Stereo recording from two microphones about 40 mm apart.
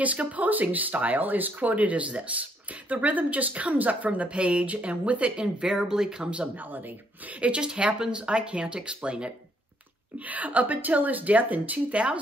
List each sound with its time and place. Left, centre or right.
0.0 s speech: right
5.4 s speech: centre
6.2 s speech: right
6.5 s speech: right
7.3 s speech: right
7.6 s speech: right
10.1 s speech: right